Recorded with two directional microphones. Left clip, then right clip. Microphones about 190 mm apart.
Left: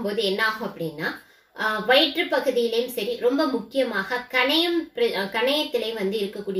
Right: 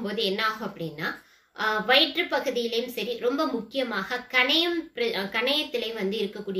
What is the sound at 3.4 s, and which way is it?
A woman's voice, 15° right (ahead or behind).